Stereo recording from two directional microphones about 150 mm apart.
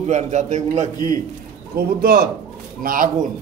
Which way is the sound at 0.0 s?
50° right (ahead or behind).